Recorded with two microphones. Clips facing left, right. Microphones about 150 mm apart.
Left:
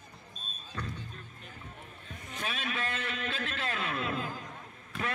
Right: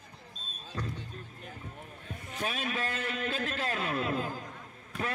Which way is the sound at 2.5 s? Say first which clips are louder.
Right 1 dB; 40° right (ahead or behind).